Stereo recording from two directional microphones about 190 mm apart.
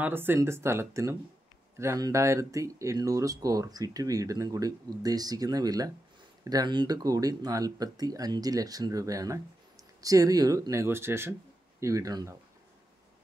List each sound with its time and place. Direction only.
0.0 s speech: 10° right (ahead or behind)